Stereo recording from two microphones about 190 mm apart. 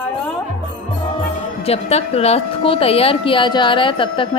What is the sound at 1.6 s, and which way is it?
A woman's voice, 35° left (ahead or behind).